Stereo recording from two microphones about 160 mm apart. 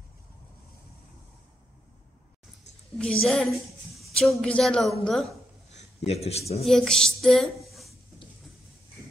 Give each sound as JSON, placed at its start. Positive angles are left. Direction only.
{"t": 3.0, "sound": "a woman's voice", "side_deg": 5}
{"t": 6.0, "sound": "a man's voice", "side_deg": 40}
{"t": 6.7, "sound": "a woman's voice", "side_deg": 5}